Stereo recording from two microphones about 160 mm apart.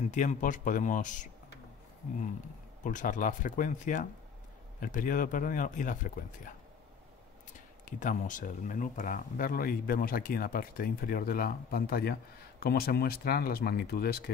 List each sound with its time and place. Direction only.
0.1 s speech: 50° left (ahead or behind)
2.8 s speech: 55° left (ahead or behind)
8.0 s speech: 55° left (ahead or behind); by 14.3 s 75° left (ahead or behind)